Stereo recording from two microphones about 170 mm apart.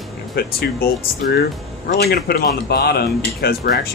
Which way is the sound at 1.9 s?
70° left (ahead or behind).